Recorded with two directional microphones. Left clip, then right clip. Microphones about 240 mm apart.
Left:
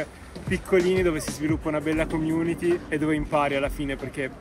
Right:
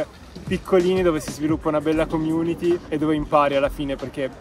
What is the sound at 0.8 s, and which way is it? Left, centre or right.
Speech, centre.